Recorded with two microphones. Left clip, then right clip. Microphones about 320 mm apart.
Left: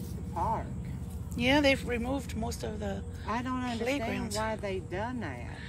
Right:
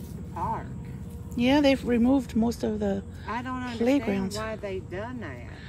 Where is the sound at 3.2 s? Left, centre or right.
Centre.